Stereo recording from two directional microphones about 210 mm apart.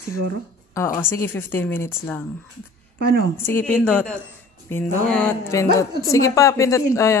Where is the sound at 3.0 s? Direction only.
50° right (ahead or behind).